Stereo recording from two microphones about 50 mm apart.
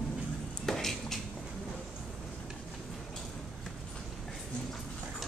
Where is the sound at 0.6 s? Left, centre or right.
Centre.